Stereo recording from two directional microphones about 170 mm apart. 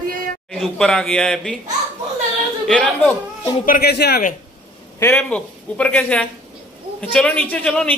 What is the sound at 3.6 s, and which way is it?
Speech, 60° left (ahead or behind).